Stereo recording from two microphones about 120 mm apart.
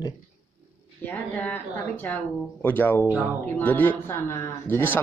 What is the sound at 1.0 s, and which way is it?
Speech, 15° left (ahead or behind).